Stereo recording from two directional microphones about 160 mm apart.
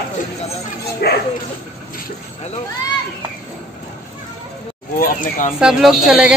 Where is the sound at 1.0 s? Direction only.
80° left.